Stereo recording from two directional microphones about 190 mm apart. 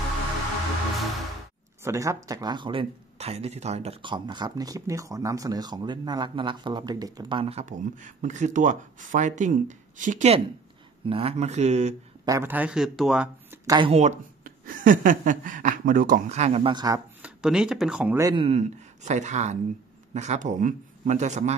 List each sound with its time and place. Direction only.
1.9 s speech: 15° right (ahead or behind); by 11.9 s 35° right (ahead or behind)
12.3 s speech: 10° right (ahead or behind)
13.7 s speech: 25° right (ahead or behind)
17.2 s speech: 5° right (ahead or behind)
18.3 s speech: 35° right (ahead or behind)